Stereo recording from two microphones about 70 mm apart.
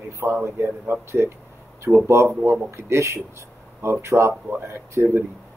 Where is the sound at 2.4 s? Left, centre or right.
Right.